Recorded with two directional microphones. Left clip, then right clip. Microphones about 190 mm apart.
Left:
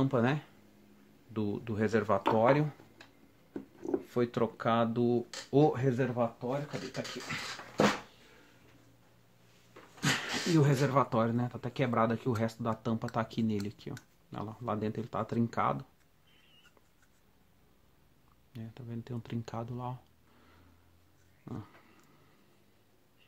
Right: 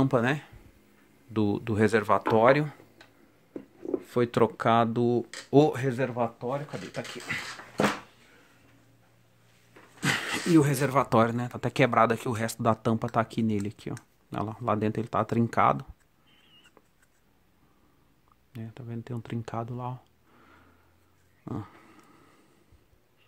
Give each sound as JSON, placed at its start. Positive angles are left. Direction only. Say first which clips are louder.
{"t": 0.0, "sound": "speech", "louder": "right 5 dB", "side_deg": -50}
{"t": 4.1, "sound": "speech", "louder": "right 9 dB", "side_deg": -55}
{"t": 10.0, "sound": "speech", "louder": "right 4 dB", "side_deg": -50}
{"t": 18.5, "sound": "speech", "louder": "right 4 dB", "side_deg": -35}
{"t": 21.5, "sound": "speech", "louder": "right 8 dB", "side_deg": -45}